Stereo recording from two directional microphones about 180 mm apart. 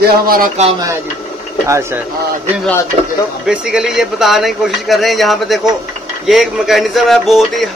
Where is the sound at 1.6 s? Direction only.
15° right (ahead or behind).